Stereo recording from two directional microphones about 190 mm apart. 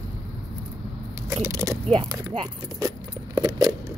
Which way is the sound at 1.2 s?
15° right (ahead or behind).